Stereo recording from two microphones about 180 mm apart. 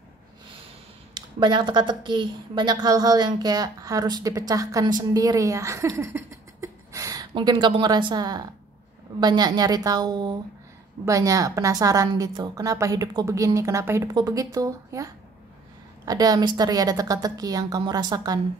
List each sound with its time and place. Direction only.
1.1 s a woman's voice: 25° right (ahead or behind)
16.1 s a woman's voice: 20° right (ahead or behind)